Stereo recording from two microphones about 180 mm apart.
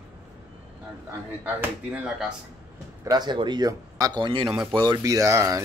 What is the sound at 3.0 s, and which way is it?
A man's voice, 25° right (ahead or behind).